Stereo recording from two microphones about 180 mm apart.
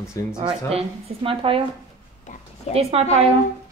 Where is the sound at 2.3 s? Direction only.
45° left (ahead or behind).